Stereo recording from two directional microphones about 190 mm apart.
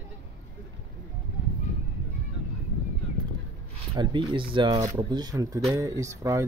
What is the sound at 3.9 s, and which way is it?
Speech, 25° right (ahead or behind).